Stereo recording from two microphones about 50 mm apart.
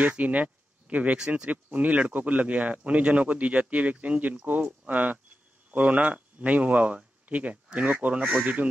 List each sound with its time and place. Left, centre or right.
0.2 s speech: right